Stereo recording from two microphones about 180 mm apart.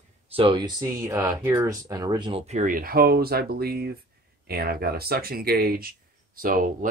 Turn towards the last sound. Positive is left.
turn(degrees=-50)  # may be behind; listen again after turning